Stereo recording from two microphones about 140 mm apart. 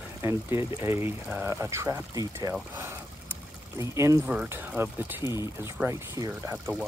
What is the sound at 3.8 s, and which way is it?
Speech, 20° right (ahead or behind).